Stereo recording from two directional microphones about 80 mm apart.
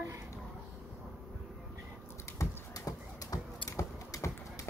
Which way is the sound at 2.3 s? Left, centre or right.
Left.